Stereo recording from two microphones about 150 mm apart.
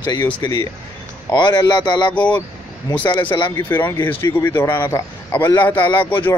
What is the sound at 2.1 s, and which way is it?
Speech, 10° left (ahead or behind).